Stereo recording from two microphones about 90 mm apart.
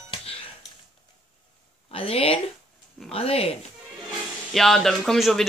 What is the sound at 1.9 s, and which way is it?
Speech, 90° left.